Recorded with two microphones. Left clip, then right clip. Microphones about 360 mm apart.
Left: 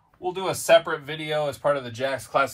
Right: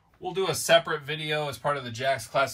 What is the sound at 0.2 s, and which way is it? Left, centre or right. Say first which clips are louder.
Speech: left 1 dB; centre.